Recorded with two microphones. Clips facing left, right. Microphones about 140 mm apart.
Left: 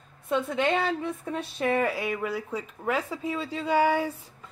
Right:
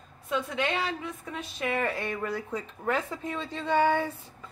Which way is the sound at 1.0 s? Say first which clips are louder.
Left 6 dB; 30° left (ahead or behind).